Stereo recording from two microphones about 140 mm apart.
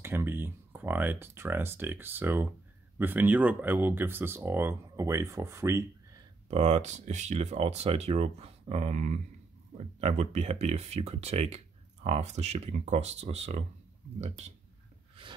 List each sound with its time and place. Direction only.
0.0 s speech: 15° right (ahead or behind)
6.5 s speech: 55° right (ahead or behind)